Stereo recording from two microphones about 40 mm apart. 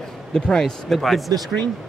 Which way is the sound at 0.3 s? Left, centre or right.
Centre.